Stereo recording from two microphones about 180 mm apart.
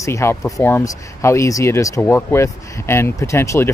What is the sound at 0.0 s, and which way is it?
Speech, 15° left (ahead or behind).